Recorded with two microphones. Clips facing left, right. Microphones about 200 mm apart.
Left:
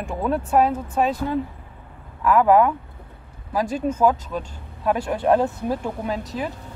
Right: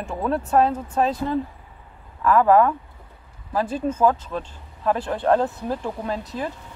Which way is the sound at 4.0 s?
10° left (ahead or behind).